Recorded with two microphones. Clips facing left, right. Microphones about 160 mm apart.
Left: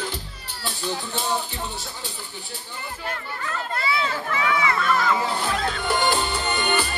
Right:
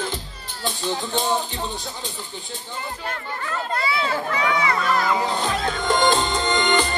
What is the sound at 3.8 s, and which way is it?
Chatter, 35° right (ahead or behind).